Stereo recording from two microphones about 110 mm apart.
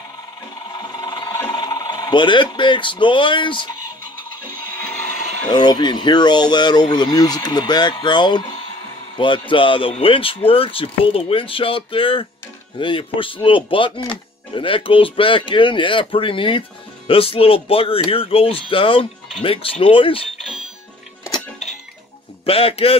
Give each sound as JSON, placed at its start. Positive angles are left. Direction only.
{"t": 0.7, "sound": "a sound", "side_deg": 40}
{"t": 5.5, "sound": "a man's voice", "side_deg": 40}
{"t": 22.5, "sound": "a man's voice", "side_deg": 60}